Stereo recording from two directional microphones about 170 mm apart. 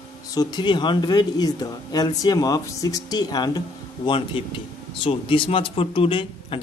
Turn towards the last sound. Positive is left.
turn(degrees=30)  # may be behind; listen again after turning